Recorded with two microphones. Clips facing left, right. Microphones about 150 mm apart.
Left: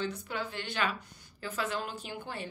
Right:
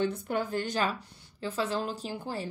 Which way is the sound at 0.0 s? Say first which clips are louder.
Right 6 dB; 50° right (ahead or behind).